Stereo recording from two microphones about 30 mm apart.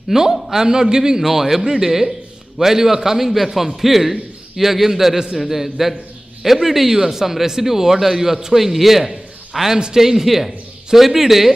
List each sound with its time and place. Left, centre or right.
0.1 s a man's voice: centre
1.2 s a man's voice: centre